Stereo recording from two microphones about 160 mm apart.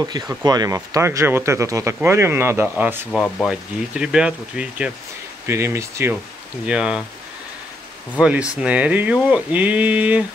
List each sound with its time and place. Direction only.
0.0 s speech: 25° right (ahead or behind)
6.6 s speech: 5° right (ahead or behind)
8.2 s speech: 5° right (ahead or behind)